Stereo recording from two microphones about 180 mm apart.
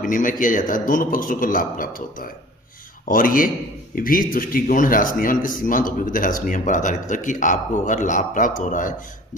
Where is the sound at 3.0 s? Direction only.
50° left (ahead or behind).